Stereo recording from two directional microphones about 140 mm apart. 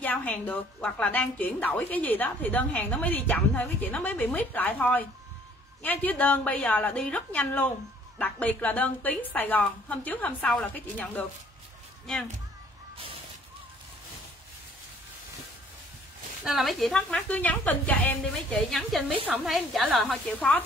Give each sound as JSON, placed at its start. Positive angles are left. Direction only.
{"t": 0.0, "sound": "a woman's voice", "side_deg": 10}
{"t": 12.9, "sound": "a sound", "side_deg": -40}
{"t": 16.4, "sound": "a woman's voice", "side_deg": 0}
{"t": 20.3, "sound": "a woman's voice", "side_deg": 10}